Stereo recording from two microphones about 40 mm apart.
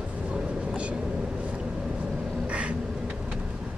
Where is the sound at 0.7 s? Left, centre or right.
Right.